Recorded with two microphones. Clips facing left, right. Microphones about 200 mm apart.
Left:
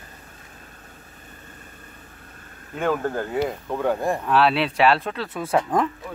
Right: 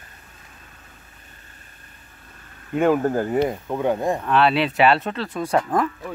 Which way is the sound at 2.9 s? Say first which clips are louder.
Right 4 dB; 20° right (ahead or behind).